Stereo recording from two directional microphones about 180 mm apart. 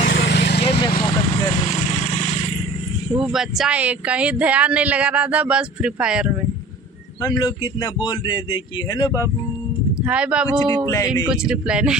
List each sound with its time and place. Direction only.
0.1 s vehicle: 65° left (ahead or behind)
0.6 s vehicle: 30° left (ahead or behind)
3.1 s speech: 5° right (ahead or behind)
7.2 s a man's voice: 20° left (ahead or behind)
10.0 s speech: 5° right (ahead or behind)